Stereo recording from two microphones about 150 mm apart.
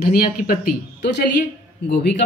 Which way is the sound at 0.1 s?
75° left (ahead or behind).